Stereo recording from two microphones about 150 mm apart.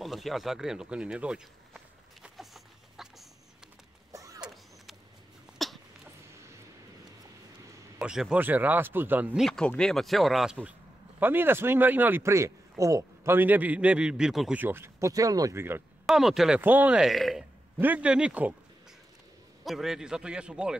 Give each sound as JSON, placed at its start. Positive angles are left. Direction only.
{"t": 0.0, "sound": "speech", "side_deg": 0}
{"t": 2.2, "sound": "a sound", "side_deg": 0}
{"t": 4.1, "sound": "power windows", "side_deg": -20}
{"t": 5.5, "sound": "dog", "side_deg": -5}
{"t": 8.0, "sound": "a man's voice", "side_deg": -5}
{"t": 9.5, "sound": "a man's voice", "side_deg": 5}
{"t": 14.6, "sound": "a man's voice", "side_deg": -15}
{"t": 16.1, "sound": "speech", "side_deg": 0}
{"t": 17.7, "sound": "a man's voice", "side_deg": -10}
{"t": 19.6, "sound": "speech", "side_deg": 0}